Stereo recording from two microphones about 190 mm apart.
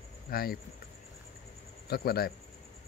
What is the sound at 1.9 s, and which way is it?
Speech, 55° left (ahead or behind).